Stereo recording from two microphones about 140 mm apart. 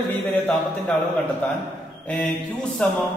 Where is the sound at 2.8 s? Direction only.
10° left (ahead or behind).